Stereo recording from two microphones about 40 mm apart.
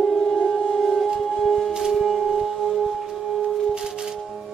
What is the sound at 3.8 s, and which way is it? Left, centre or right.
Music, right.